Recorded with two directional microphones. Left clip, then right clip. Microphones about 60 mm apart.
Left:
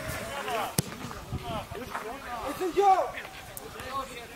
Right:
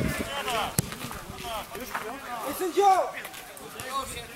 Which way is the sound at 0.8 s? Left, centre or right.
Centre.